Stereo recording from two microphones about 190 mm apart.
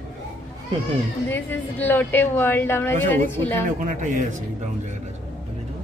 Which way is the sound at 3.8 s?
40° right (ahead or behind).